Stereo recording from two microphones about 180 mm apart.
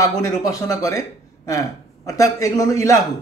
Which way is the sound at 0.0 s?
20° left (ahead or behind).